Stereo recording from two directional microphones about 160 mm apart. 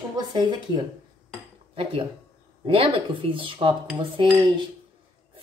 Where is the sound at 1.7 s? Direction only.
35° right (ahead or behind).